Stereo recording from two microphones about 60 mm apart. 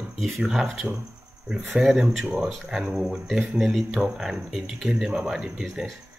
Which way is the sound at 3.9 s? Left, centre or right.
Centre.